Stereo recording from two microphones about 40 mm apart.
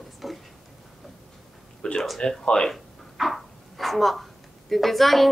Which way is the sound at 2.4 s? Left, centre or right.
Centre.